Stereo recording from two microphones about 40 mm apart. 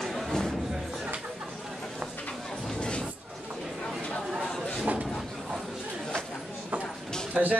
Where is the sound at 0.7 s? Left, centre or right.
Centre.